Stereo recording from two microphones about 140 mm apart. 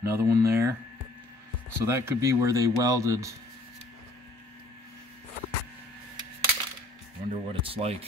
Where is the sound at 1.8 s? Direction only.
20° right (ahead or behind).